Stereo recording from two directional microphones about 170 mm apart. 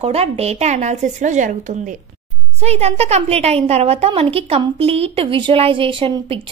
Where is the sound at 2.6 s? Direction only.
35° right (ahead or behind).